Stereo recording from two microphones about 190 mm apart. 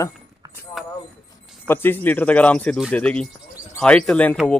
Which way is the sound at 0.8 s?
Centre (ahead or behind).